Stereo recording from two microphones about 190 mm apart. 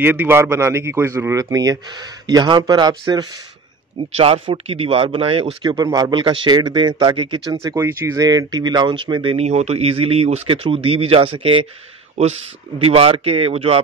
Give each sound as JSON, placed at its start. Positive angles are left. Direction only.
{"t": 0.0, "sound": "speech", "side_deg": -10}
{"t": 7.6, "sound": "speech", "side_deg": -15}